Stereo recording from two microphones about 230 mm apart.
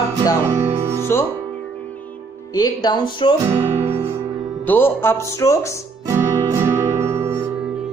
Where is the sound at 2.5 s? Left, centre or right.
Centre.